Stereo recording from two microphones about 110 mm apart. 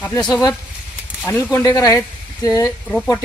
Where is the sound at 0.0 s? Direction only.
35° left (ahead or behind).